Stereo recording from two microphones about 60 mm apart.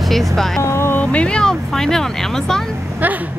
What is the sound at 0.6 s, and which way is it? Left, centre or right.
Speech, left.